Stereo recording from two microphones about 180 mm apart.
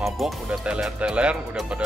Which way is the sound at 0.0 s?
Centre (ahead or behind).